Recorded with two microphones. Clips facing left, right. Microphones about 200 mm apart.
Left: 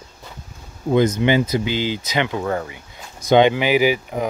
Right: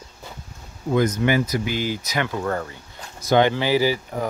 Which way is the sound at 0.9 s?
25° left (ahead or behind).